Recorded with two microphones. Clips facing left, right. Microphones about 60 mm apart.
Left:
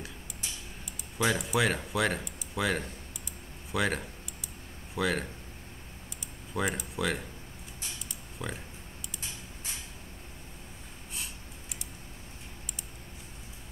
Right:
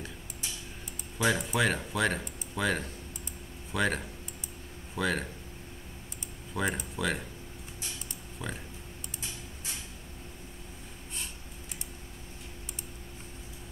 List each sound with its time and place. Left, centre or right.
1.1 s speech: centre
6.5 s speech: centre
8.4 s speech: centre